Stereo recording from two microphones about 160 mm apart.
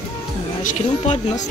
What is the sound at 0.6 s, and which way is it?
Speech, 45° left (ahead or behind).